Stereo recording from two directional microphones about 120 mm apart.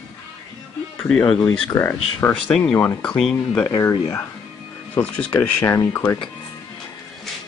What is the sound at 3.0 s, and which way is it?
Speech, 5° left (ahead or behind).